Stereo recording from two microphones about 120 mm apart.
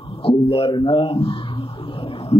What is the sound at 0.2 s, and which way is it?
Speech, 50° left (ahead or behind).